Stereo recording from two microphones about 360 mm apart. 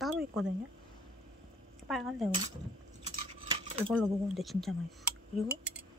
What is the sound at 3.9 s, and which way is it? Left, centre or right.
Speech, centre.